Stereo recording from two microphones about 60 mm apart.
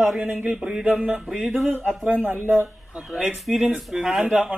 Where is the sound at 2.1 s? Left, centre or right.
Right.